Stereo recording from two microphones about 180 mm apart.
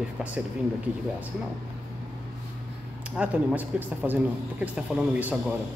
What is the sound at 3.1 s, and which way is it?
Speech, 5° right (ahead or behind).